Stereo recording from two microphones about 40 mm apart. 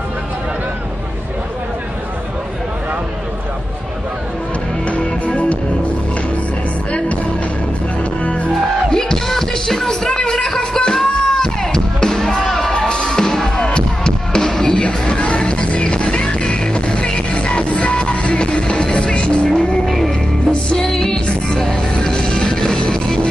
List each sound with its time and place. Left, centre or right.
4.8 s music: left
8.0 s music: left
8.5 s music: centre